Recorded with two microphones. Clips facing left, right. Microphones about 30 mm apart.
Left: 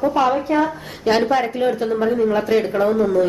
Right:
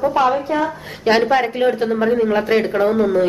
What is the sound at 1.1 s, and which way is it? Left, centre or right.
Speech, right.